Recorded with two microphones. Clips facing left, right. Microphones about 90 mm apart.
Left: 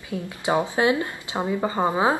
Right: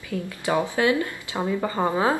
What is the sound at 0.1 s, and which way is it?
Speech, 20° left (ahead or behind).